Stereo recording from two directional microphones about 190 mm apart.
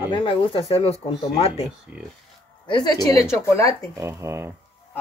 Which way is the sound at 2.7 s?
20° left (ahead or behind).